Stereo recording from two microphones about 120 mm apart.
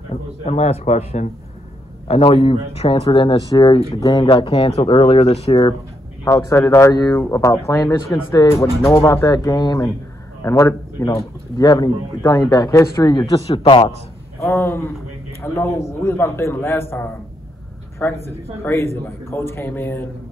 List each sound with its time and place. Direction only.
0.1 s a man's voice: 60° left (ahead or behind)
2.0 s speech: 60° left (ahead or behind)
3.3 s speech: 35° left (ahead or behind)
4.2 s speech: 45° left (ahead or behind)
6.2 s speech: 25° left (ahead or behind)
13.5 s a man's voice: 45° left (ahead or behind)
14.4 s speech: 25° left (ahead or behind)
18.0 s speech: 15° left (ahead or behind)